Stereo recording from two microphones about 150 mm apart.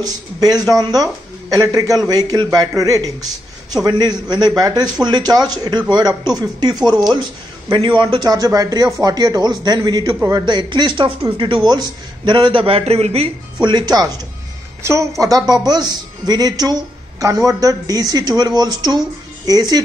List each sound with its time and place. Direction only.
0.0 s speech: 25° right (ahead or behind)